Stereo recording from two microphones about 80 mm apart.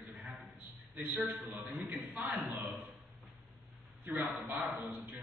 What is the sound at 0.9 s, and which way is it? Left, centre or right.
A man's voice, right.